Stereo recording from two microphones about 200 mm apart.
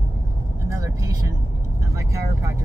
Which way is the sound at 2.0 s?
15° right (ahead or behind).